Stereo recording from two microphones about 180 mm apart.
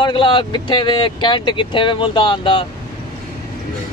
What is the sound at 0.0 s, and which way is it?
Speech, 25° left (ahead or behind).